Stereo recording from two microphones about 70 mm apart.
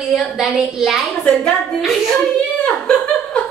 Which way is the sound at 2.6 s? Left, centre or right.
Centre.